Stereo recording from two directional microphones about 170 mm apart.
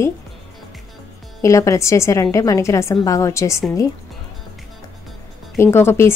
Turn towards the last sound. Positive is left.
turn(degrees=15)  # may be behind; listen again after turning